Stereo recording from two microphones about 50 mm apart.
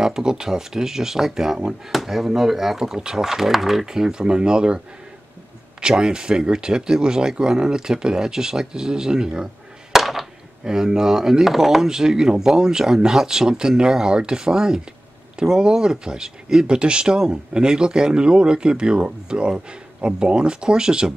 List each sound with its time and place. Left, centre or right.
0.0 s speech: centre